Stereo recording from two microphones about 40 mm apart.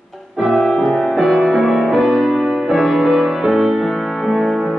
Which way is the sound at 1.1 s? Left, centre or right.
Centre.